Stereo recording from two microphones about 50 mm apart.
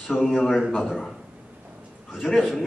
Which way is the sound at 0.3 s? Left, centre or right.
Centre.